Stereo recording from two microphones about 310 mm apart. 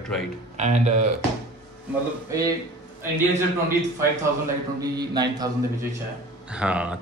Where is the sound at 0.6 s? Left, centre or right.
Right.